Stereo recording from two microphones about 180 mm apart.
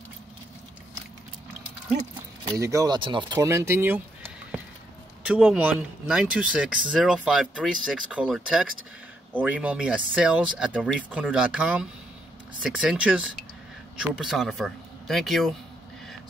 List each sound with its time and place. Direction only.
2.6 s speech: 20° right (ahead or behind); by 15.5 s centre (ahead or behind)